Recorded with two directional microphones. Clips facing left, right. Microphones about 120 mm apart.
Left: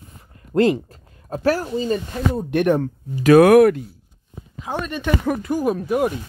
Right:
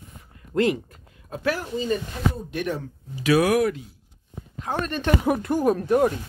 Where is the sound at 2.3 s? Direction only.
60° left (ahead or behind).